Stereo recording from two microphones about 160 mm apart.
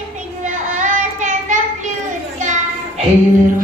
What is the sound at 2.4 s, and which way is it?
Children playing, 50° right (ahead or behind).